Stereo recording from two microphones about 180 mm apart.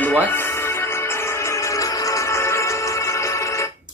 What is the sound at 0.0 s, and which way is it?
Music, 10° left (ahead or behind).